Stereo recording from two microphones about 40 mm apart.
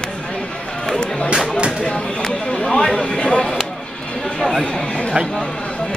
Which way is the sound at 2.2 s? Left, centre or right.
Centre.